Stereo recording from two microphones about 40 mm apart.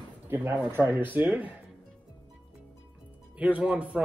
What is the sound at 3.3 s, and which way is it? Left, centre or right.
Speech, right.